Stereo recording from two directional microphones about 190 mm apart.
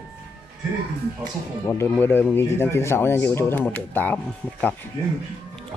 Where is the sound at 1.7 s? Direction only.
10° left (ahead or behind).